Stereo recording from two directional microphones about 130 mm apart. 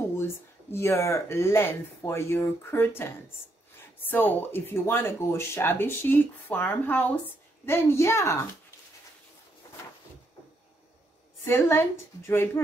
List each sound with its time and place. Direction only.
0.2 s speech: 20° left (ahead or behind)
11.4 s speech: 20° left (ahead or behind)